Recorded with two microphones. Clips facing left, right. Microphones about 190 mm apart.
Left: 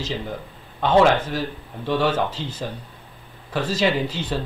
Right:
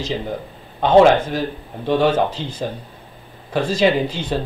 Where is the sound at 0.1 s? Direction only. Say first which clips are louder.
Right 4 dB; 25° right (ahead or behind).